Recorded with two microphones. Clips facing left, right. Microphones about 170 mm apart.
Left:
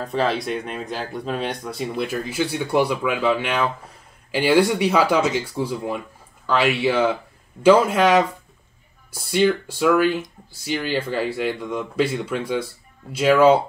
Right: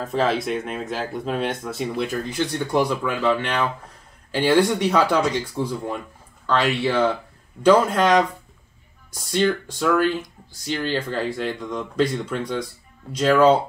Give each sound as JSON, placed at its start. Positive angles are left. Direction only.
{"t": 0.0, "sound": "speech", "side_deg": 0}